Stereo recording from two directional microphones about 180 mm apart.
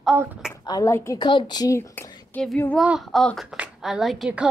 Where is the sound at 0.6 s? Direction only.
20° left (ahead or behind); by 4.4 s 5° right (ahead or behind).